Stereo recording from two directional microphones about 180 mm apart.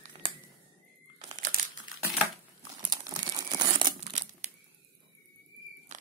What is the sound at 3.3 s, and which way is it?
Crumpling, 25° right (ahead or behind).